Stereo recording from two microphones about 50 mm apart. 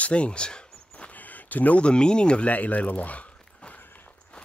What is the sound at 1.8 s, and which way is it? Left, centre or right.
Speech, centre.